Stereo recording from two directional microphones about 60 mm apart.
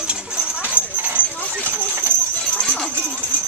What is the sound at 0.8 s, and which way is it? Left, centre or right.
Horse, left.